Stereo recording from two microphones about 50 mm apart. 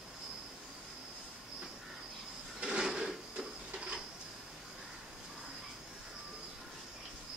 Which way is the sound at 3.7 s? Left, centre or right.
Centre.